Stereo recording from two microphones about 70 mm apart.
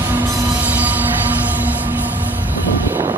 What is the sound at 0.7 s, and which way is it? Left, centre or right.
Music, right.